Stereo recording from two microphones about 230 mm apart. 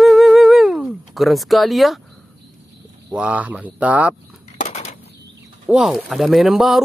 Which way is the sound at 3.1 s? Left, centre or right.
Centre.